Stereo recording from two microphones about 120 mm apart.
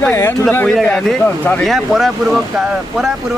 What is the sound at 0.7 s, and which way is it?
Speech, 5° left (ahead or behind).